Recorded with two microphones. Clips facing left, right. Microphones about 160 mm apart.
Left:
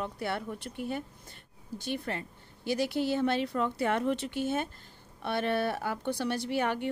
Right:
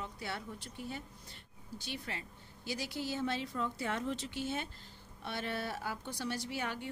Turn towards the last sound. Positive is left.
turn(degrees=65)  # may be behind; listen again after turning